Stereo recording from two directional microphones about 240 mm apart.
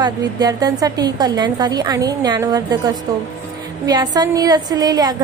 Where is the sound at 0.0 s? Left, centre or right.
Centre.